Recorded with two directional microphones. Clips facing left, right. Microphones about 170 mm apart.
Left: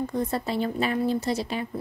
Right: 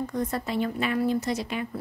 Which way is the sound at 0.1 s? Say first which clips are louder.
Left 1 dB; 30° left (ahead or behind).